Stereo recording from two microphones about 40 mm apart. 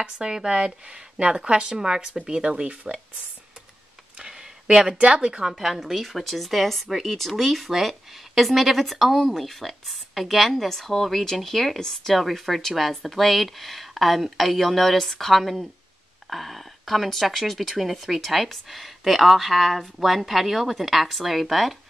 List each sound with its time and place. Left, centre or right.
0.0 s speech: centre
4.2 s a sound: centre
4.9 s speech: right
5.5 s speech: centre